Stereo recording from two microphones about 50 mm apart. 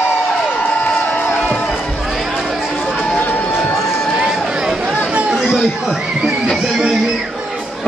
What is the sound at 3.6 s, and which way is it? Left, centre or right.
Crowd, centre.